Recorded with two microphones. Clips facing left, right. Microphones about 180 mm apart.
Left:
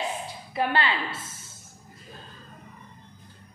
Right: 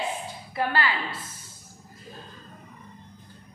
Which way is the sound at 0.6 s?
25° left (ahead or behind).